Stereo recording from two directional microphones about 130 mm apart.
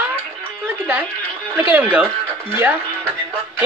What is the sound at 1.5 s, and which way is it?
Speech, 15° right (ahead or behind).